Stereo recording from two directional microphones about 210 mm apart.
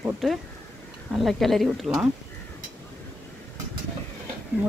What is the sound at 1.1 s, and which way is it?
Speech, centre (ahead or behind).